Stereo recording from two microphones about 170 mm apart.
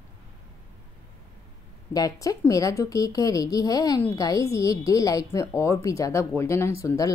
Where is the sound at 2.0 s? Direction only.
20° left (ahead or behind).